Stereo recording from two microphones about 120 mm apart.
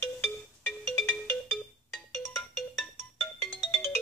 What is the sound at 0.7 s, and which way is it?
Ringtone, 15° left (ahead or behind).